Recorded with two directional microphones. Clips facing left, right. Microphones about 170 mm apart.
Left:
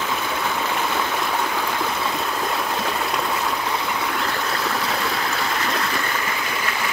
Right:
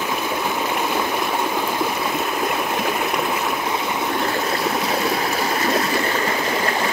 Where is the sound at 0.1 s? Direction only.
15° right (ahead or behind).